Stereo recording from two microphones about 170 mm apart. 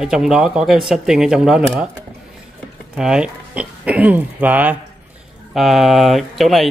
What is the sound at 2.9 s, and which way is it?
Speech, 5° right (ahead or behind).